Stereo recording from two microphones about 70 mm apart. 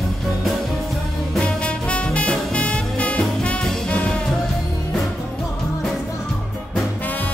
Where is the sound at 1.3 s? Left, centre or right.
Centre.